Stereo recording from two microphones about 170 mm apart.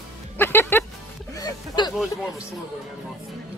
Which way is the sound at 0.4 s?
15° left (ahead or behind).